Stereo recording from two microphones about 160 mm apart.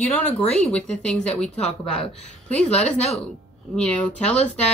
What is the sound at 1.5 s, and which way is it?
Speech, 40° left (ahead or behind).